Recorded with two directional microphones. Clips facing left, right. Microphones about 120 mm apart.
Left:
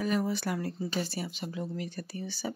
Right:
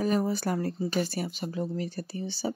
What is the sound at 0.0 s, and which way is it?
Speech, 40° right (ahead or behind).